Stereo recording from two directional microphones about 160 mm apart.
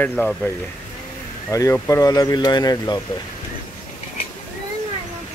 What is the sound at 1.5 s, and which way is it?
Speech, 20° left (ahead or behind).